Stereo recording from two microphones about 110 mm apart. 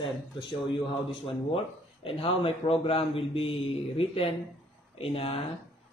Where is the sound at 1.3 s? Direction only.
60° left (ahead or behind).